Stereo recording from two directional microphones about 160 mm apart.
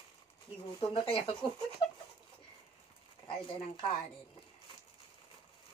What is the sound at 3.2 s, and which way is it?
Speech, 35° left (ahead or behind).